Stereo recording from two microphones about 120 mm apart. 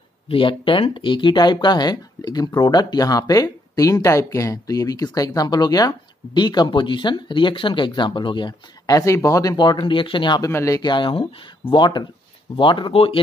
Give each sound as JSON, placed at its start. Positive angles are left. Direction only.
{"t": 0.3, "sound": "speech", "side_deg": 45}
{"t": 10.5, "sound": "speech", "side_deg": 25}
{"t": 10.8, "sound": "speech", "side_deg": 40}